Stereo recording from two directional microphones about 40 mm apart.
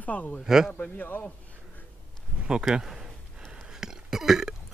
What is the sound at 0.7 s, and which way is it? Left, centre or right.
Speech, left.